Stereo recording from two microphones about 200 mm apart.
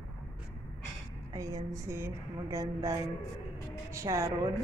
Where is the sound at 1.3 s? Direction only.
15° right (ahead or behind).